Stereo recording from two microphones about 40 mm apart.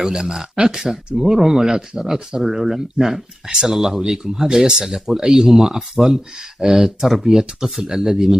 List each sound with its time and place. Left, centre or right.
0.0 s speech: centre